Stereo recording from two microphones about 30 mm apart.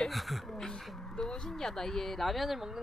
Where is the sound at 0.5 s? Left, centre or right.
Centre.